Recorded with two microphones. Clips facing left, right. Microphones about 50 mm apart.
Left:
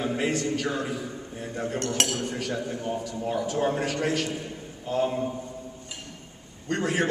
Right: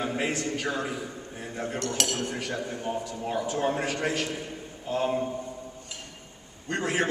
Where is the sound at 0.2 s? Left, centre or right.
Right.